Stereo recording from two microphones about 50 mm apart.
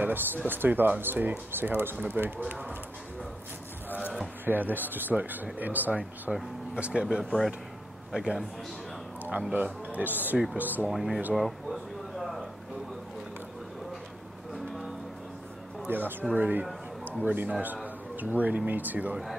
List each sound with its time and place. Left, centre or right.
0.0 s speech: right
2.4 s speech: right
4.5 s speech: right
6.7 s a man's voice: right
10.9 s speech: centre
11.3 s a sound: centre
14.5 s music: centre
15.9 s speech: right